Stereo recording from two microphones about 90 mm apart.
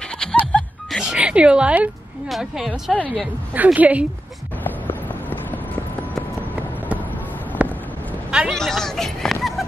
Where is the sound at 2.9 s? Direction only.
10° left (ahead or behind).